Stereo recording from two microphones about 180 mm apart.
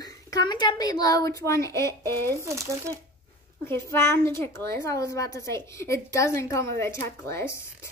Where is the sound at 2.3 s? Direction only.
15° right (ahead or behind).